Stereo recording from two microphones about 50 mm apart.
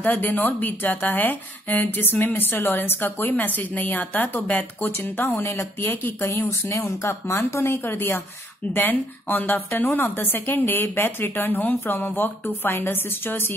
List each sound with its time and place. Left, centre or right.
0.0 s a woman's voice: left